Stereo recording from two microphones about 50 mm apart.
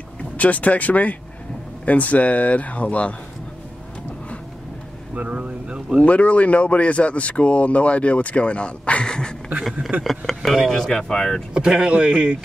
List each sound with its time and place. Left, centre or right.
0.2 s speech: left
5.1 s speech: right
6.0 s speech: left
10.0 s speech: centre
11.5 s speech: centre